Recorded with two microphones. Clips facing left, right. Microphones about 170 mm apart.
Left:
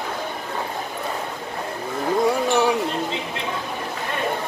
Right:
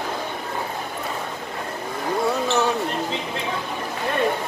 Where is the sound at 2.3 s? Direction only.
10° left (ahead or behind).